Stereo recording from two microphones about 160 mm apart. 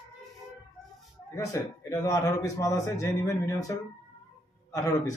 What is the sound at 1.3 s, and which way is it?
Speech, 20° left (ahead or behind).